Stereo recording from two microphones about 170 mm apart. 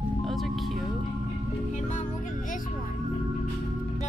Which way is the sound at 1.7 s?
45° left (ahead or behind).